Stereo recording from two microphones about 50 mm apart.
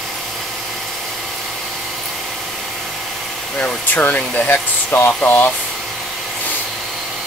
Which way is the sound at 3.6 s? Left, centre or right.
Left.